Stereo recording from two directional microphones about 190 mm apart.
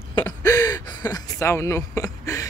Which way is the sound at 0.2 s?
20° left (ahead or behind).